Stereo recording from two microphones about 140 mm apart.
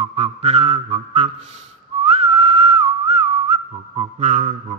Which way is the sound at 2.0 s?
45° right (ahead or behind).